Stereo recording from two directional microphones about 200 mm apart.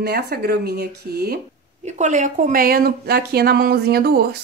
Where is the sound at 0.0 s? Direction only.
55° right (ahead or behind).